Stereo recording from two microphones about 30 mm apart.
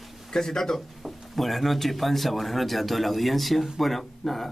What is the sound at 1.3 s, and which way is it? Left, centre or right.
A man's voice, centre.